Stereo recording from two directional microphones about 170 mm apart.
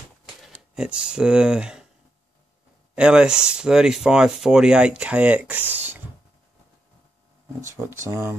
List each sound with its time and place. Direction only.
0.5 s speech: 5° right (ahead or behind)
3.0 s speech: 5° right (ahead or behind)
7.6 s speech: 15° right (ahead or behind)